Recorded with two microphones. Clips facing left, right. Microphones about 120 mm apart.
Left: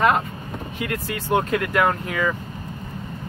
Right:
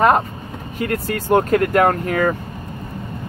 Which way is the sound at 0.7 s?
45° right (ahead or behind).